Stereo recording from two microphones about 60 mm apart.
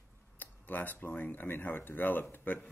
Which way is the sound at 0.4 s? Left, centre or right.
Left.